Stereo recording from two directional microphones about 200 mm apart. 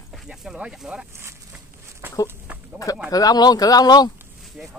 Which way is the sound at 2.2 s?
10° right (ahead or behind).